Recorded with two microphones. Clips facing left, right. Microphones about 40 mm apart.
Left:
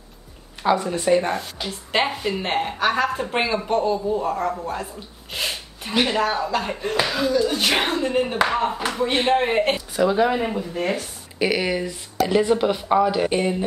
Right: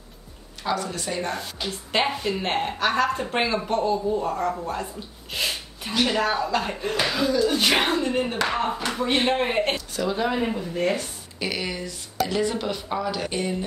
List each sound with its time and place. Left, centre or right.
0.7 s speech: left
1.3 s speech: centre
5.3 s sneeze: centre
6.0 s speech: centre
11.3 s a woman's voice: centre